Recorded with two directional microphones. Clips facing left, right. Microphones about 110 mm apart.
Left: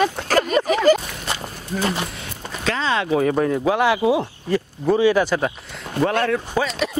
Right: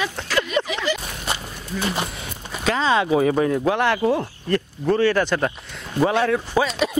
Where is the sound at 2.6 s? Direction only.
15° right (ahead or behind).